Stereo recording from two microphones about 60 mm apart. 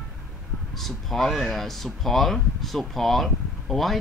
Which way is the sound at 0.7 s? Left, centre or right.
Centre.